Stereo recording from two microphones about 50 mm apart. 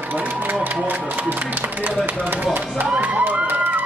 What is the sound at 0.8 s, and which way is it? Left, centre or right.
Speech, right.